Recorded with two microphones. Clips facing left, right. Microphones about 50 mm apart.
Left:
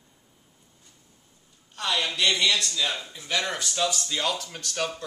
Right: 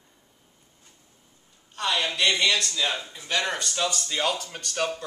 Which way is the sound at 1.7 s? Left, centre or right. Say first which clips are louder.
Right 1 dB; centre.